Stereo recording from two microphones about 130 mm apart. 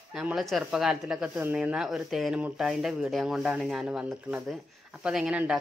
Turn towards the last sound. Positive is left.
turn(degrees=-5)  # may be behind; listen again after turning